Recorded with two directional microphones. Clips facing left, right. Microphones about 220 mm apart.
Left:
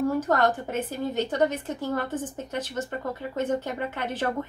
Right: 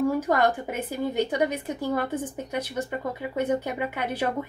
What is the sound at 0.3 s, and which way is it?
Speech, 10° right (ahead or behind).